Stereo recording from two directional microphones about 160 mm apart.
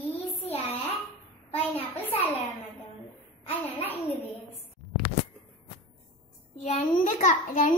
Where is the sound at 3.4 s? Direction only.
40° left (ahead or behind).